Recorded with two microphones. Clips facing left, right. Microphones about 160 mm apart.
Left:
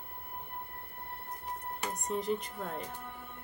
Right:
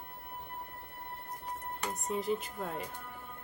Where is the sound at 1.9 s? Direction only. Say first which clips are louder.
Even; centre (ahead or behind).